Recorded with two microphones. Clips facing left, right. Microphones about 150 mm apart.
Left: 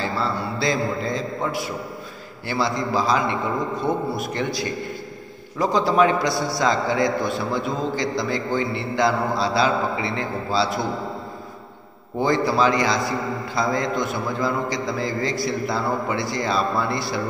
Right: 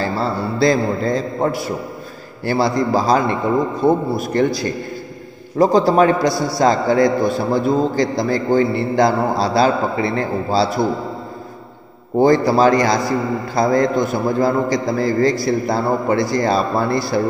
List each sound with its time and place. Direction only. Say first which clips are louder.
0.0 s a man's voice: right 5 dB; 40° right (ahead or behind)
12.2 s a man's voice: right 7 dB; 40° right (ahead or behind)